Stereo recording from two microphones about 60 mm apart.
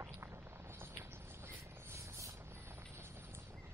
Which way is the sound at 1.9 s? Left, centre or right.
Right.